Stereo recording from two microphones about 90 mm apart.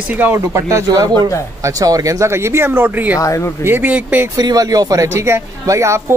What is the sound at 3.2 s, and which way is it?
Speech, 35° left (ahead or behind).